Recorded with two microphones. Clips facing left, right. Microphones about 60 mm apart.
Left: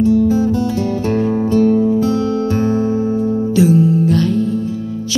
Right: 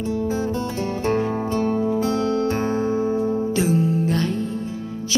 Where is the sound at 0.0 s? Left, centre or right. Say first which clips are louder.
Left 10 dB; right.